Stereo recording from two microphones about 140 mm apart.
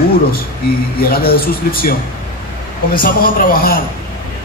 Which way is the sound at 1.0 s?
90° left.